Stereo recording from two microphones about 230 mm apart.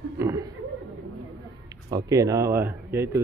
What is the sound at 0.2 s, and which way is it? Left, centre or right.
Chuckle, centre.